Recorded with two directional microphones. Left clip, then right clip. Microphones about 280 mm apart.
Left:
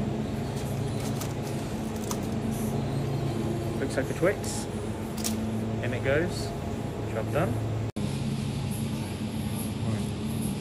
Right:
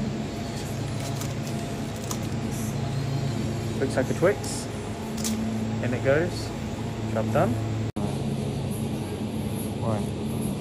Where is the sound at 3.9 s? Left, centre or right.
Centre.